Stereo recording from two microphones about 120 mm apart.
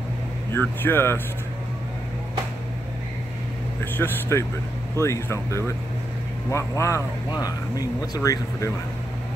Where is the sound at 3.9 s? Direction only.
20° left (ahead or behind).